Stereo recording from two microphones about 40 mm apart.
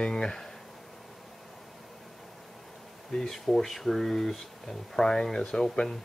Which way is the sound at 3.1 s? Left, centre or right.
Centre.